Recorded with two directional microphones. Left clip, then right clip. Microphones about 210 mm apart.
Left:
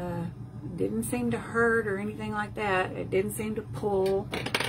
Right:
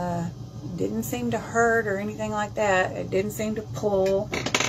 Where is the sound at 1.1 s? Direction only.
25° left (ahead or behind).